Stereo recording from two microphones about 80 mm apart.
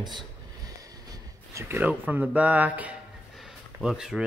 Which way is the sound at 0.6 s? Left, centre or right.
Right.